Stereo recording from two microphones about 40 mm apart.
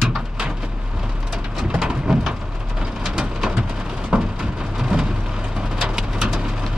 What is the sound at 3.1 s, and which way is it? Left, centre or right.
Rain, centre.